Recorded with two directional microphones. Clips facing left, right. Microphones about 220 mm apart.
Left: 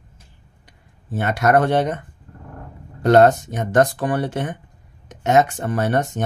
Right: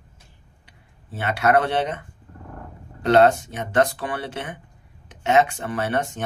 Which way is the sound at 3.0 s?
45° left (ahead or behind).